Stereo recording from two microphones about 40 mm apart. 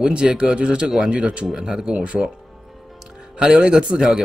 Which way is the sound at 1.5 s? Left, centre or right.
Centre.